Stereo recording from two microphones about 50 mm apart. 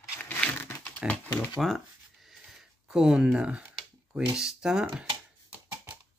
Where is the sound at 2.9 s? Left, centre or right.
Centre.